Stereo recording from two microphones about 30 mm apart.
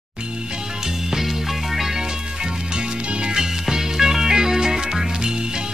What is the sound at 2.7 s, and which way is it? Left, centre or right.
Music, right.